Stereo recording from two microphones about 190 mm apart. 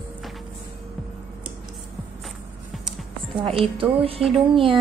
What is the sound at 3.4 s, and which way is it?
A woman's voice, 30° right (ahead or behind).